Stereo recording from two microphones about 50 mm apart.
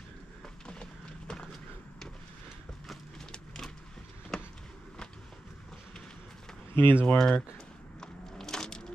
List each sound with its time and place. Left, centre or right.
0.7 s a sound: centre
6.7 s speech: left
7.2 s speech: centre
8.0 s crushing: centre